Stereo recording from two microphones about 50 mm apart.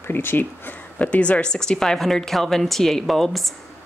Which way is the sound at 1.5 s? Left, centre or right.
Centre.